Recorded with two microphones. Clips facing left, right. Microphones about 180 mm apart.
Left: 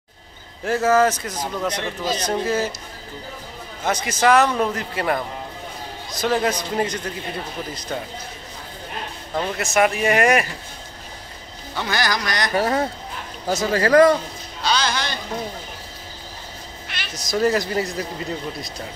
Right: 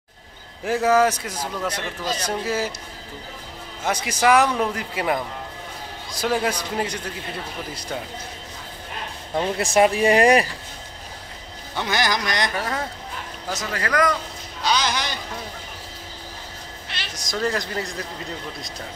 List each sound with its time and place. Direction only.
0.7 s speech: 15° right (ahead or behind)
3.8 s speech: 10° right (ahead or behind)
9.3 s speech: 15° right (ahead or behind)
9.6 s speech: 30° right (ahead or behind)
11.7 s a man's voice: 20° right (ahead or behind)
12.5 s speech: 30° left (ahead or behind)
14.6 s a sound: 15° right (ahead or behind)
16.9 s meow: 30° right (ahead or behind)
17.3 s speech: 5° left (ahead or behind)